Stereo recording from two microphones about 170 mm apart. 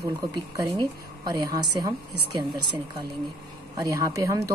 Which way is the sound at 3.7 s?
20° right (ahead or behind).